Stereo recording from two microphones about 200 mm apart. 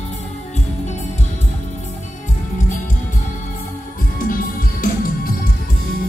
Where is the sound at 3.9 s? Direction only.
45° left (ahead or behind).